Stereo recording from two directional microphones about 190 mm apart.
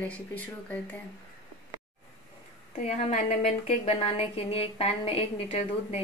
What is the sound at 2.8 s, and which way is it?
Speech, 35° left (ahead or behind).